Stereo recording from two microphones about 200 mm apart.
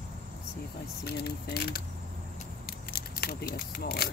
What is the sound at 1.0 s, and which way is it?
Speech, 55° left (ahead or behind).